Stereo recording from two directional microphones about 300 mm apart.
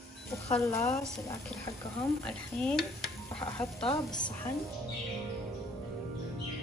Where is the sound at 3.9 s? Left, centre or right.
Centre.